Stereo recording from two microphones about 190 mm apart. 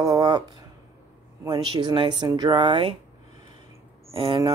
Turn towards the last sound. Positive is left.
turn(degrees=-30)  # may be behind; listen again after turning